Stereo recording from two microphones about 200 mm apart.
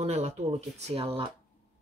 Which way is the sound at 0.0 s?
35° right (ahead or behind).